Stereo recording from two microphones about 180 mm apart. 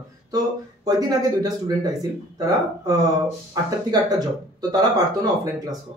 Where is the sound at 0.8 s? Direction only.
20° right (ahead or behind).